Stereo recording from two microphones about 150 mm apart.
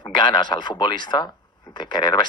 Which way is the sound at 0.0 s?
30° left (ahead or behind).